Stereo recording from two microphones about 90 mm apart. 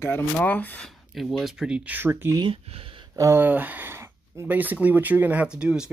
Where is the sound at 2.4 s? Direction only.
85° right.